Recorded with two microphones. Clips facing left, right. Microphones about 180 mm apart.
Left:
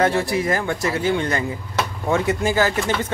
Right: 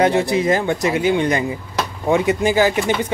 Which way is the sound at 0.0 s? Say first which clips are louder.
Right 3 dB; 20° right (ahead or behind).